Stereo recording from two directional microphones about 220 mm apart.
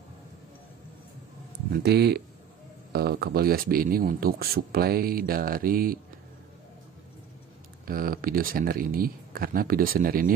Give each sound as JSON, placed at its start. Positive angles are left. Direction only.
{"t": 1.7, "sound": "speech", "side_deg": -50}
{"t": 7.8, "sound": "speech", "side_deg": -40}